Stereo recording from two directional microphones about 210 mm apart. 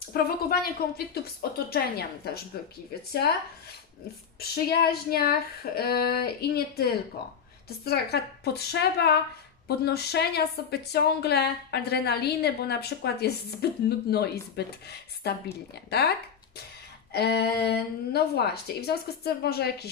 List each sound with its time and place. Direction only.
0.1 s a woman's voice: 45° left (ahead or behind)
4.4 s a woman's voice: 50° left (ahead or behind)
17.1 s a woman's voice: 50° left (ahead or behind)